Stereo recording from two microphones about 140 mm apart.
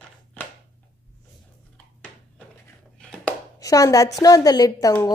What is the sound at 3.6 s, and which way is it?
A woman's voice, 25° left (ahead or behind).